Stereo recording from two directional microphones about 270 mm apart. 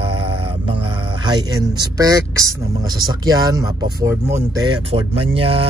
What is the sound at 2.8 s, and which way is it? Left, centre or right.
Speech, centre.